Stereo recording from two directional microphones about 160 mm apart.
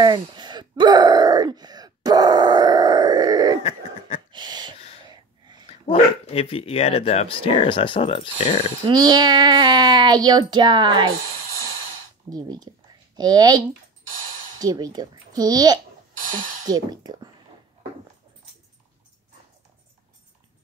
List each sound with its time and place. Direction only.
0.0 s groan: 30° right (ahead or behind)
4.3 s gasp: 25° right (ahead or behind)
5.0 s a sound: 25° right (ahead or behind)
5.7 s speech: 35° left (ahead or behind)
8.8 s a child's voice: 25° right (ahead or behind)
12.3 s a child's voice: 25° right (ahead or behind)
14.6 s a child's voice: 25° right (ahead or behind)